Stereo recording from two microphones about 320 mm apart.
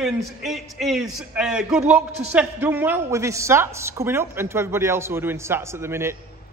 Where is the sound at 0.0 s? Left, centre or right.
Centre.